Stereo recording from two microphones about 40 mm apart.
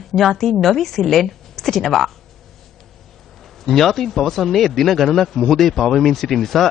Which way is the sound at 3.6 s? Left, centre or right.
Centre.